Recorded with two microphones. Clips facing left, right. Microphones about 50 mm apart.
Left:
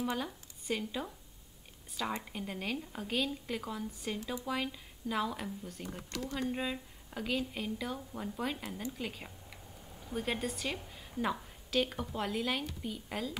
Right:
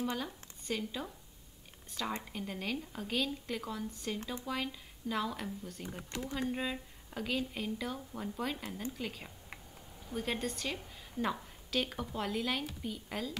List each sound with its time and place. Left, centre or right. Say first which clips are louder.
0.0 s a woman's voice: left 1 dB; centre
5.9 s speech: left 1 dB; centre
6.5 s a woman's voice: even; centre